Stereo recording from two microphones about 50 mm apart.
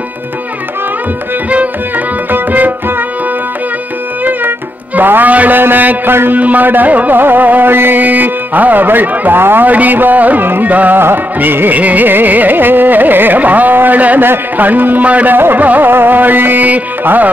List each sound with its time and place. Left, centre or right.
2.3 s music: right
4.2 s music: right
5.6 s a man's voice: right
6.3 s carnatic music: right
8.0 s carnatic music: right